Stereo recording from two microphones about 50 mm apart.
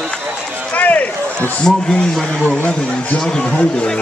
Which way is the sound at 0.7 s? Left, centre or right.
Left.